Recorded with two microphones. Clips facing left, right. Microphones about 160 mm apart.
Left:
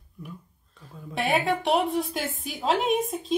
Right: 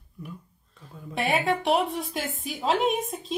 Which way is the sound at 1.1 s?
Centre (ahead or behind).